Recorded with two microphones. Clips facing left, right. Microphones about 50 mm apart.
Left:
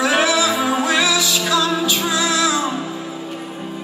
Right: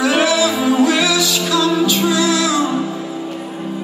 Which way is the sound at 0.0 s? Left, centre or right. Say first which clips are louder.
Right 2 dB; centre.